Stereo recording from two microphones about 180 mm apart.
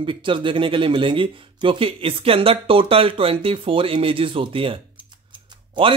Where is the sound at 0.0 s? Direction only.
30° right (ahead or behind).